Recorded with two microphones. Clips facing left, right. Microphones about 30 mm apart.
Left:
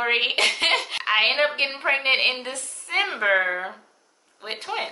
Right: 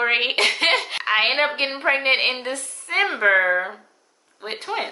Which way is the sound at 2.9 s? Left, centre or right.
Centre.